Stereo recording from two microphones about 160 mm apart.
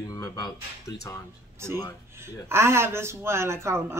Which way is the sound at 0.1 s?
25° left (ahead or behind).